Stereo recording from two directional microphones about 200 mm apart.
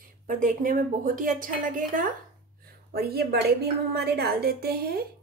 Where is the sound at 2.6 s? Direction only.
50° right (ahead or behind).